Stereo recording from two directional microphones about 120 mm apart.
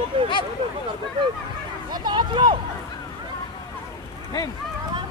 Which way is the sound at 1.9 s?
35° right (ahead or behind).